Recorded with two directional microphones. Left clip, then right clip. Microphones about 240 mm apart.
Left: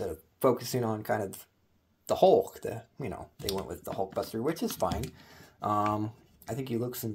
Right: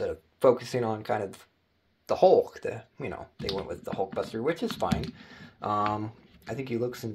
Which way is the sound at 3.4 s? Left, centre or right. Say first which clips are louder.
Right 2 dB; left.